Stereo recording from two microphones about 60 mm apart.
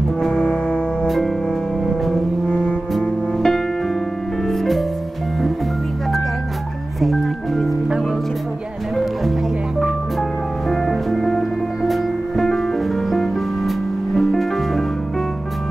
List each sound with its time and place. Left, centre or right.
0.2 s music: centre
1.0 s music: centre
2.4 s music: centre
7.0 s music: centre
10.7 s music: centre